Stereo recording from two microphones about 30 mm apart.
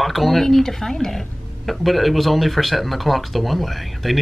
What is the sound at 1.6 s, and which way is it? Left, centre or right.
Speech, centre.